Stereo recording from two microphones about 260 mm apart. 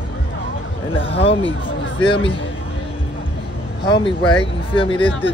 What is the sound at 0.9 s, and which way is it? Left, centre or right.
Speech, left.